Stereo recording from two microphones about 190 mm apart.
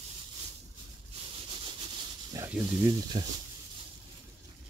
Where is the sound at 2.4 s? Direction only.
20° right (ahead or behind).